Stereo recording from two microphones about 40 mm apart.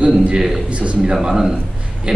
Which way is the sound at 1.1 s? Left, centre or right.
Centre.